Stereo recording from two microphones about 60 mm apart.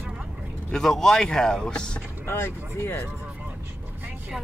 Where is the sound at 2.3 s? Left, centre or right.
Left.